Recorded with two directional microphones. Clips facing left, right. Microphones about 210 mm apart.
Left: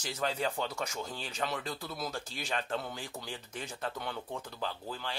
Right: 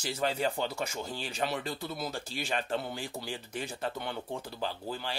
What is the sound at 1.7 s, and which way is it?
Speech, 25° right (ahead or behind).